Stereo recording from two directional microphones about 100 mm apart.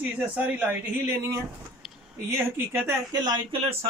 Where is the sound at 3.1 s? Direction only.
45° right (ahead or behind).